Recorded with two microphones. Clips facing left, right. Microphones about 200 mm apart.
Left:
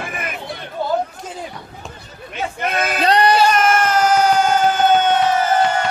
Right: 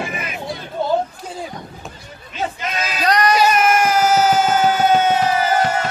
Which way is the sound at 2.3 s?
55° left (ahead or behind).